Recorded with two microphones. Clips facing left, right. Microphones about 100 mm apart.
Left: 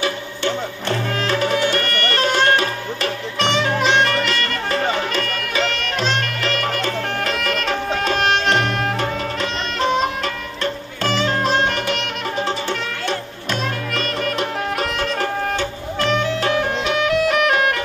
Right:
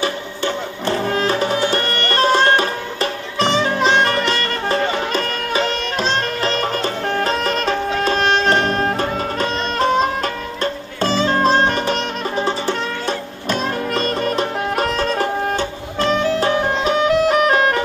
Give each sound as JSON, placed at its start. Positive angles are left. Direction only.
{"t": 0.0, "sound": "music", "side_deg": -35}